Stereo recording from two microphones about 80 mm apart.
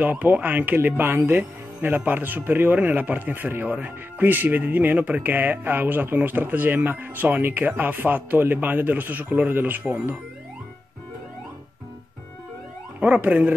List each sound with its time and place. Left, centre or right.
0.0 s speech: right
13.0 s speech: centre